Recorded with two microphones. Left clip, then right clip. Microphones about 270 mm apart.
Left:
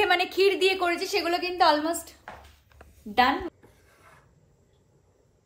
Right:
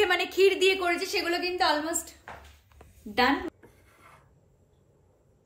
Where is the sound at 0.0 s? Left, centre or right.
Centre.